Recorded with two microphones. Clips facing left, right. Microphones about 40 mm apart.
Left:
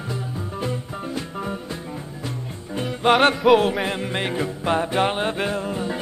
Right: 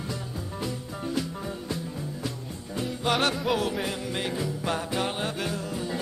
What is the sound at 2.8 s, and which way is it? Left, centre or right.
Music, left.